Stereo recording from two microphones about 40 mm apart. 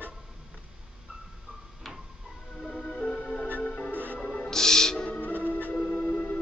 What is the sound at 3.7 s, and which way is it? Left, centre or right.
Music, left.